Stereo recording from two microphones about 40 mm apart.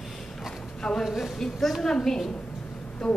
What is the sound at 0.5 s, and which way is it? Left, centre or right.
Clip-clop, centre.